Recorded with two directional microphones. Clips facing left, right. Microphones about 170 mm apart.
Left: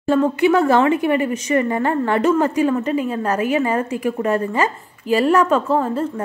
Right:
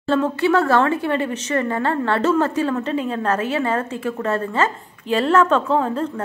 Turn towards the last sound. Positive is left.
turn(degrees=5)  # may be behind; listen again after turning